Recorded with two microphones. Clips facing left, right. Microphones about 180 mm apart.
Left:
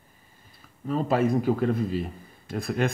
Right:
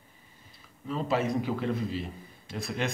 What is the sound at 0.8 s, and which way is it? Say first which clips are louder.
Speech: left 5 dB; 45° left (ahead or behind).